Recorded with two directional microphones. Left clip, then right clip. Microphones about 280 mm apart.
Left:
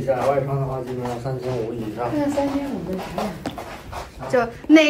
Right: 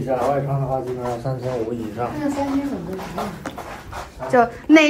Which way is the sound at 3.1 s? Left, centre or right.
Left.